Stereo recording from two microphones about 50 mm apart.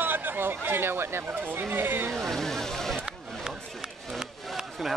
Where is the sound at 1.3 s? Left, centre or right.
Right.